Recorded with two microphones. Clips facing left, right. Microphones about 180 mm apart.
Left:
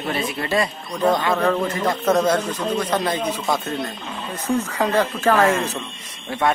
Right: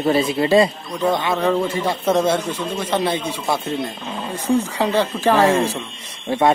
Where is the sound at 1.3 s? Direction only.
10° right (ahead or behind).